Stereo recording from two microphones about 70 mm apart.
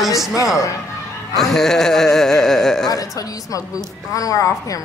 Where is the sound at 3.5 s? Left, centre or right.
Left.